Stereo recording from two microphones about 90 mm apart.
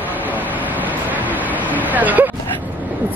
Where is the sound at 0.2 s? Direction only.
20° right (ahead or behind).